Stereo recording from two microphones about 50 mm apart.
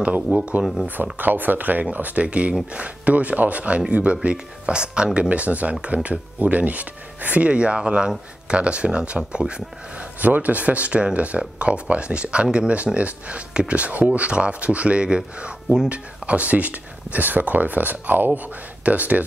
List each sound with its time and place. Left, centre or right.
0.3 s speech: right
10.2 s speech: right; by 15.9 s centre
15.9 s speech: right